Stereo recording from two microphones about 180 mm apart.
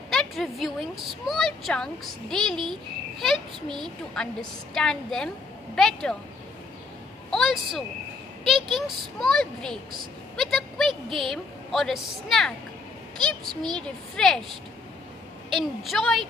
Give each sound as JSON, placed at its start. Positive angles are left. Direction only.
{"t": 0.1, "sound": "a woman's voice", "side_deg": 0}
{"t": 3.6, "sound": "a woman's voice", "side_deg": -25}
{"t": 4.7, "sound": "a woman's voice", "side_deg": 0}
{"t": 7.2, "sound": "a sound", "side_deg": 0}
{"t": 8.7, "sound": "a woman's voice", "side_deg": 0}
{"t": 10.3, "sound": "a sound", "side_deg": 0}
{"t": 11.1, "sound": "a woman's voice", "side_deg": 0}
{"t": 15.5, "sound": "a woman's voice", "side_deg": 0}